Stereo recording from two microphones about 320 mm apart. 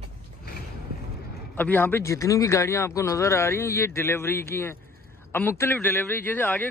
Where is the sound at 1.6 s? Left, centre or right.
Centre.